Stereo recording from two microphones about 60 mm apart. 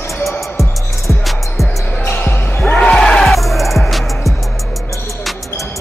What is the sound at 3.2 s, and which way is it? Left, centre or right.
Music, centre.